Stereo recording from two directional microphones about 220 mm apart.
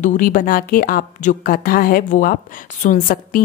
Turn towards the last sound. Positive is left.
turn(degrees=35)  # may be behind; listen again after turning